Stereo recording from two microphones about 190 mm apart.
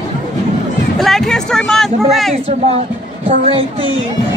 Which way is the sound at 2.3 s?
35° right (ahead or behind).